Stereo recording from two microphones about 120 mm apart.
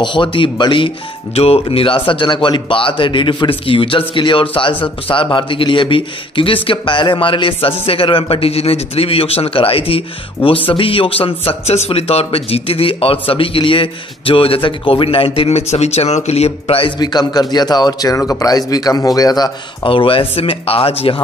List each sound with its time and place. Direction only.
0.0 s speech: 40° left (ahead or behind)
17.0 s speech: 35° left (ahead or behind); by 21.2 s 50° left (ahead or behind)